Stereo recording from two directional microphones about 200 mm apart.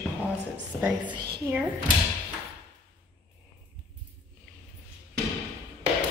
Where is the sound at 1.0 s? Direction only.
20° right (ahead or behind).